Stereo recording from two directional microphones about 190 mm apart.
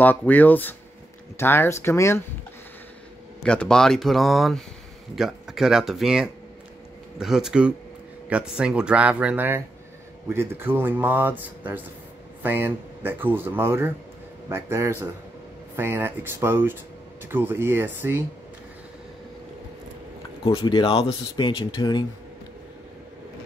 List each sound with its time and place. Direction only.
0.0 s speech: 10° left (ahead or behind)
3.4 s speech: 5° left (ahead or behind); by 18.2 s 10° right (ahead or behind)
20.4 s speech: 25° left (ahead or behind)